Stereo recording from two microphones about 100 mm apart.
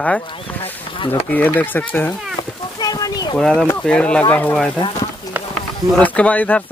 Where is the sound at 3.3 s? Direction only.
10° left (ahead or behind).